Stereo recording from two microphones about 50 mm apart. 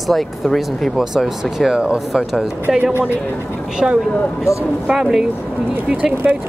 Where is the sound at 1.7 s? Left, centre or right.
Centre.